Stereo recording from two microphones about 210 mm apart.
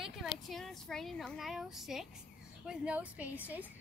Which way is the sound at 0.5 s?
Centre (ahead or behind).